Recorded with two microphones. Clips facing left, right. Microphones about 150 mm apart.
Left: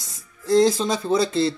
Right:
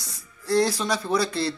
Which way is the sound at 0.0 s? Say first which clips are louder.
Left 4 dB; 20° left (ahead or behind).